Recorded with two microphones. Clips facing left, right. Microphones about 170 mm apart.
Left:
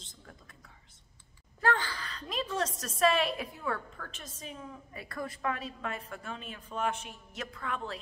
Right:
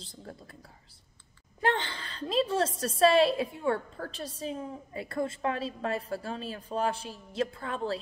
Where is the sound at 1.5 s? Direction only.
20° right (ahead or behind).